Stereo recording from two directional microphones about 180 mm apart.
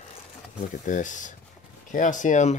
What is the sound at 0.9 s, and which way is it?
Speech, 45° left (ahead or behind).